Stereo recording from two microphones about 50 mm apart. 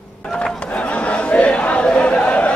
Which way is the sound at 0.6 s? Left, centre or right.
Left.